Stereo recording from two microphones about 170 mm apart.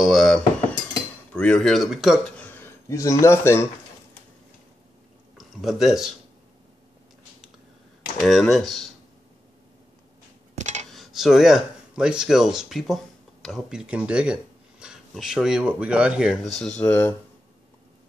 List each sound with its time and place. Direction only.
0.0 s cutlery: centre (ahead or behind)
1.3 s speech: 5° left (ahead or behind)
5.4 s speech: centre (ahead or behind)
8.2 s speech: centre (ahead or behind)
10.6 s cutlery: 45° right (ahead or behind)
10.9 s speech: centre (ahead or behind)